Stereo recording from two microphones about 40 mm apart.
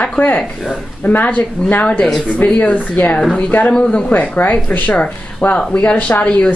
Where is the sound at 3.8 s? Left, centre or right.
Left.